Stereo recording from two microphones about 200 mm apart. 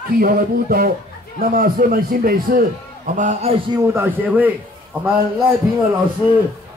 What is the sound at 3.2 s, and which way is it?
Speech, 35° right (ahead or behind).